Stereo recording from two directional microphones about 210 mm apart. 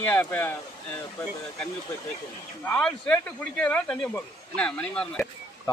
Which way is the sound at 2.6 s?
5° left (ahead or behind).